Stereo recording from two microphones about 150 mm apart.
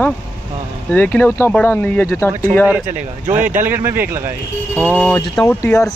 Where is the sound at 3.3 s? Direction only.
10° right (ahead or behind).